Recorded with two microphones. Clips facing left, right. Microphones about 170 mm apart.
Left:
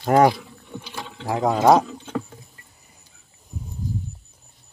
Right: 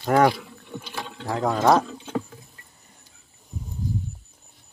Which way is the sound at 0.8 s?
5° left (ahead or behind).